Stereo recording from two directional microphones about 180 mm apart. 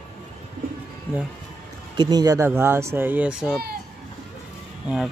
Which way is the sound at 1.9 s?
25° right (ahead or behind).